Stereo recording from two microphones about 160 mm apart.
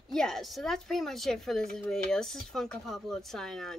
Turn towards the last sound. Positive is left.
turn(degrees=5)  # may be behind; listen again after turning